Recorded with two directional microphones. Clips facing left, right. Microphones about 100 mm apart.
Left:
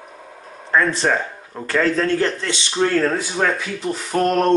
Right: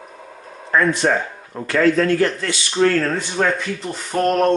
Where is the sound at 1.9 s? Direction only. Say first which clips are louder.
Right 2 dB; 30° left (ahead or behind).